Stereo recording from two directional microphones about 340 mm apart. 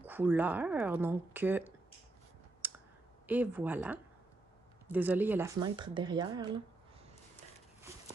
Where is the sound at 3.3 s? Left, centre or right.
Centre.